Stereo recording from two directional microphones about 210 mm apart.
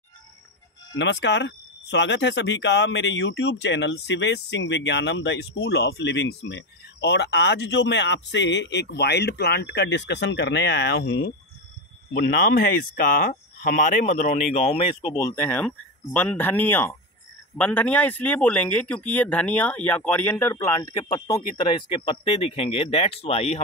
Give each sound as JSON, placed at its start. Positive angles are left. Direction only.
{"t": 0.9, "sound": "speech", "side_deg": 55}
{"t": 12.1, "sound": "speech", "side_deg": 50}
{"t": 15.1, "sound": "a man's voice", "side_deg": 10}